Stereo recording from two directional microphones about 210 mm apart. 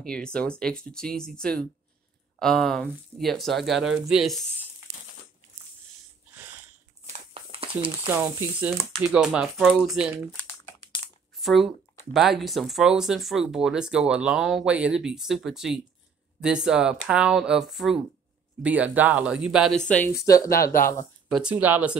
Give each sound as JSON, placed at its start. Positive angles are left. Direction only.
{"t": 0.0, "sound": "speech", "side_deg": 5}
{"t": 7.1, "sound": "a sound", "side_deg": -25}
{"t": 7.8, "sound": "speech", "side_deg": -25}
{"t": 8.1, "sound": "speech", "side_deg": -10}
{"t": 19.9, "sound": "speech", "side_deg": 10}
{"t": 21.3, "sound": "speech", "side_deg": -5}